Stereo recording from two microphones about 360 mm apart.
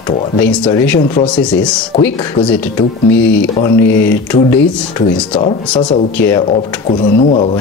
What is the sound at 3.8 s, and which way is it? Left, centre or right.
Speech, left.